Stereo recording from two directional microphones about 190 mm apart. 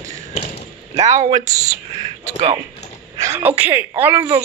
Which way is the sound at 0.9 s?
35° right (ahead or behind).